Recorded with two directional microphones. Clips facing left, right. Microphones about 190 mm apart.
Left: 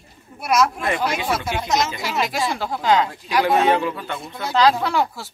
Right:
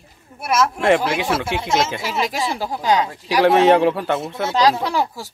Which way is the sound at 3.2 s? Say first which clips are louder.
Right 6 dB; 80° right.